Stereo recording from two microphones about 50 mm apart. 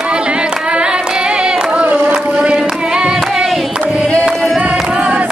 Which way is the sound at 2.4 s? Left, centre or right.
Centre.